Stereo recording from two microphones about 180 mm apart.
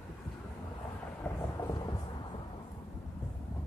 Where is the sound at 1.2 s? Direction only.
20° left (ahead or behind).